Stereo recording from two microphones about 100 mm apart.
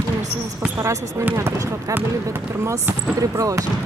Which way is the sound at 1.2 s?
20° right (ahead or behind).